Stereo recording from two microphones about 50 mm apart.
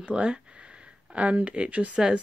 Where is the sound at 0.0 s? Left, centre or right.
Centre.